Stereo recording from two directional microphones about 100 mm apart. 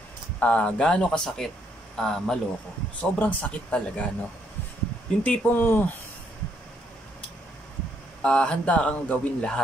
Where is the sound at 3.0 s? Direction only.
15° left (ahead or behind).